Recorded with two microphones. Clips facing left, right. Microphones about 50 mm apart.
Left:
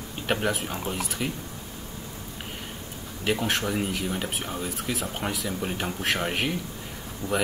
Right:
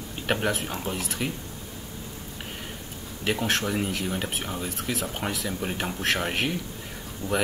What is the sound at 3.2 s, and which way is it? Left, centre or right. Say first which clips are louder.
Speech: even; centre.